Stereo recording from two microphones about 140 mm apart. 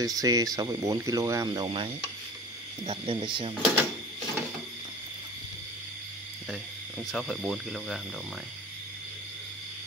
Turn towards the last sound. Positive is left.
turn(degrees=0)  # may be behind; listen again after turning